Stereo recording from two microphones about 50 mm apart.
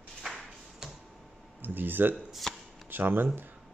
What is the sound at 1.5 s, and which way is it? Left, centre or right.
Speech, right.